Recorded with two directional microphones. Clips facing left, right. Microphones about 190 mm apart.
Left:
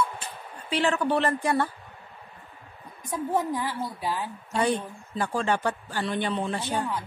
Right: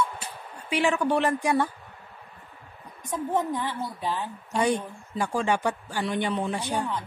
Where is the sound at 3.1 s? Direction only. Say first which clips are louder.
Even; 5° left (ahead or behind).